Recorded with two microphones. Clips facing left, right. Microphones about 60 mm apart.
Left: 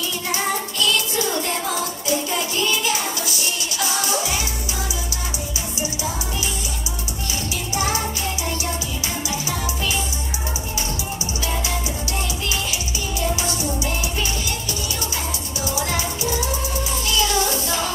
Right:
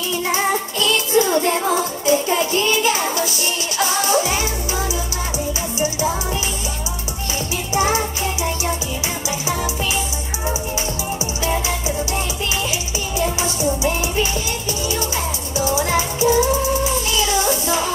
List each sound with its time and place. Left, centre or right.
0.3 s music: right
7.7 s music: right
13.4 s music: right
15.5 s music: right